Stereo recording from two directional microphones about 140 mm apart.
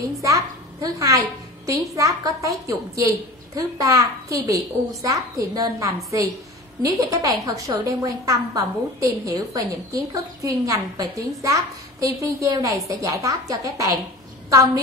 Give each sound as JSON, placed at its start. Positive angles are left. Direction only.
{"t": 0.2, "sound": "a child's voice", "side_deg": -25}